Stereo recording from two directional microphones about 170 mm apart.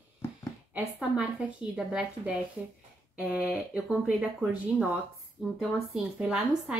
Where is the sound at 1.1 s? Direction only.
5° right (ahead or behind).